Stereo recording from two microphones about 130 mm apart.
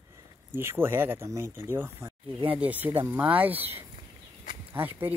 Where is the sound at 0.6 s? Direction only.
15° right (ahead or behind).